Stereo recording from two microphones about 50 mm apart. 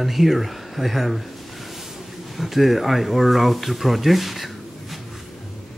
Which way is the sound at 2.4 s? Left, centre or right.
Centre.